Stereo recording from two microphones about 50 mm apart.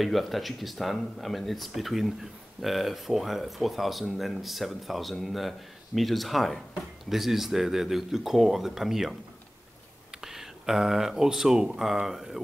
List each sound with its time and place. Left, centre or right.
0.0 s speech: centre
10.2 s speech: centre